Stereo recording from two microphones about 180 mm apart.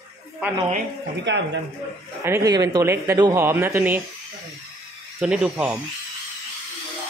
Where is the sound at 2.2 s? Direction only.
15° right (ahead or behind).